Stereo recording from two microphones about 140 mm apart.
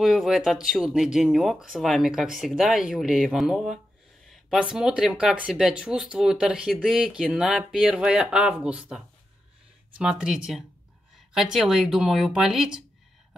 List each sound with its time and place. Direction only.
0.0 s speech: centre (ahead or behind)
4.3 s a sound: centre (ahead or behind)
4.7 s speech: 5° right (ahead or behind)